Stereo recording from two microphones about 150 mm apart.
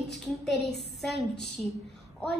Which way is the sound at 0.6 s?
90° left.